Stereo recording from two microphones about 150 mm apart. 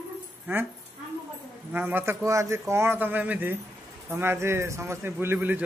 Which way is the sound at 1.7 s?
10° right (ahead or behind).